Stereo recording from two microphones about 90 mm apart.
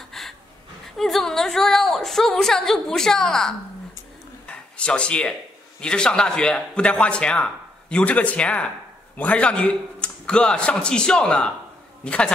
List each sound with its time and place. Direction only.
0.1 s gasp: 5° left (ahead or behind)
0.9 s a woman's voice: centre (ahead or behind)
4.5 s a sound: 10° left (ahead or behind)
5.8 s a man's voice: 10° left (ahead or behind)